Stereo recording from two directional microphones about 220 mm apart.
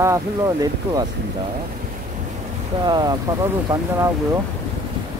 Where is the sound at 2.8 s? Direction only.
20° right (ahead or behind).